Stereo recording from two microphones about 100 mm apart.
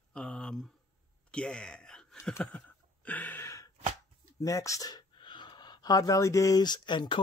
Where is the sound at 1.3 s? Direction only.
10° left (ahead or behind).